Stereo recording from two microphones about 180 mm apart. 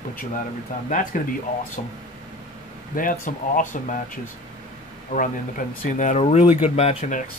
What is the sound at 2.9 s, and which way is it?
Speech, 50° left (ahead or behind).